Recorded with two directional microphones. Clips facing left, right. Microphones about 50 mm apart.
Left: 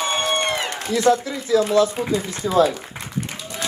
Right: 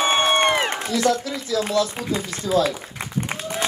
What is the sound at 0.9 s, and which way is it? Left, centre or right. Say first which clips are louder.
Speech: left 4 dB; left.